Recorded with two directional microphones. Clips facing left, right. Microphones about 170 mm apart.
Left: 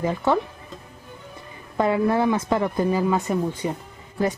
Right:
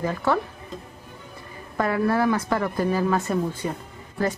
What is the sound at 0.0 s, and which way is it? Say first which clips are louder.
Speech: left 2 dB; 20° left (ahead or behind).